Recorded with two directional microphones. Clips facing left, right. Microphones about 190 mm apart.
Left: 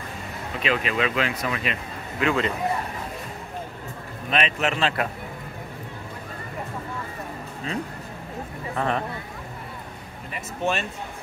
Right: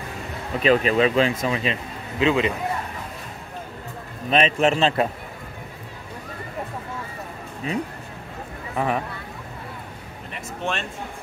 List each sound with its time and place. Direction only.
0.6 s speech: 40° right (ahead or behind); by 2.5 s 20° right (ahead or behind)
4.3 s a man's voice: 35° right (ahead or behind)
8.7 s speech: 10° right (ahead or behind)
10.3 s speech: 5° left (ahead or behind)